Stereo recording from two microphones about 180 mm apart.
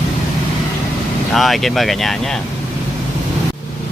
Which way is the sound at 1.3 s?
Centre (ahead or behind).